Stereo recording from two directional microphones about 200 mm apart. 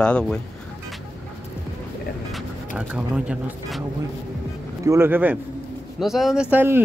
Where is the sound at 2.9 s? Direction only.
5° right (ahead or behind).